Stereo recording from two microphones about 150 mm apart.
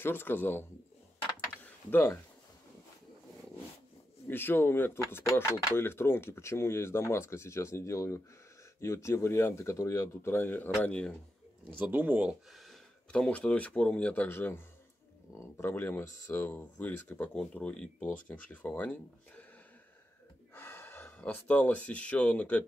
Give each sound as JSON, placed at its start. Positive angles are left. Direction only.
{"t": 0.0, "sound": "speech", "side_deg": 15}
{"t": 1.9, "sound": "speech", "side_deg": 15}
{"t": 4.3, "sound": "speech", "side_deg": 15}
{"t": 11.9, "sound": "speech", "side_deg": -10}
{"t": 20.5, "sound": "speech", "side_deg": 15}